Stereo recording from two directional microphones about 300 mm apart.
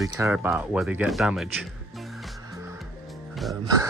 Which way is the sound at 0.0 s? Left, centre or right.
Centre.